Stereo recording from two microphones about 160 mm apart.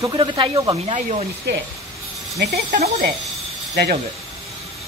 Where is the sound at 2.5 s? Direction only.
75° right (ahead or behind).